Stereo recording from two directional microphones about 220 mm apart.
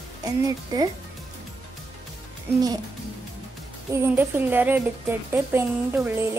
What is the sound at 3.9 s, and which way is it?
A woman's voice, 10° right (ahead or behind).